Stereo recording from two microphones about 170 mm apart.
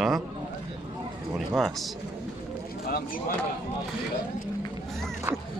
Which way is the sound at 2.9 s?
60° left (ahead or behind).